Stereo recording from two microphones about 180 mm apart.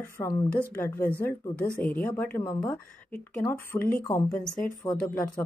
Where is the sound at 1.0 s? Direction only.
55° left (ahead or behind).